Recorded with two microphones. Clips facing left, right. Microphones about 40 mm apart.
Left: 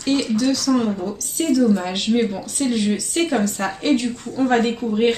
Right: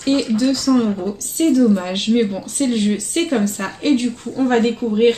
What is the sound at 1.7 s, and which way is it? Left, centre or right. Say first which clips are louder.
Speech: right 2 dB; centre.